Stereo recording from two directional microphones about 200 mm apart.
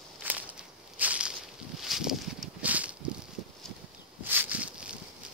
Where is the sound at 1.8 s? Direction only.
Centre (ahead or behind).